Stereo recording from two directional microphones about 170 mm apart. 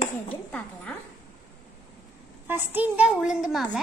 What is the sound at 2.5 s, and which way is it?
A woman's voice, 10° right (ahead or behind).